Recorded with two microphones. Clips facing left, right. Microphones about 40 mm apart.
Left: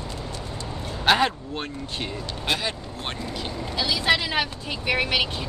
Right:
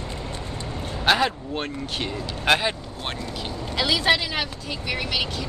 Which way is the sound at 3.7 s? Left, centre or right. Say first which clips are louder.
Right 3 dB; right.